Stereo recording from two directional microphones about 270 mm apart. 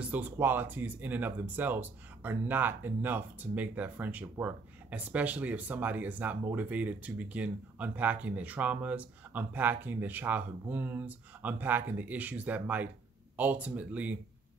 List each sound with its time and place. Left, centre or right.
0.0 s speech: centre